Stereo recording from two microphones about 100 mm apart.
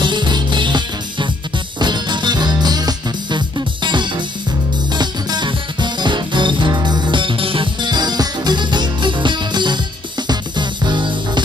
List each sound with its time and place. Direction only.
0.0 s music: 50° right (ahead or behind)